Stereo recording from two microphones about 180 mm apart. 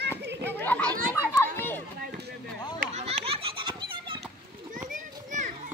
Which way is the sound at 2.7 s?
35° right (ahead or behind).